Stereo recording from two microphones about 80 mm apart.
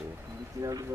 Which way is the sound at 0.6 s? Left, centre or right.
Right.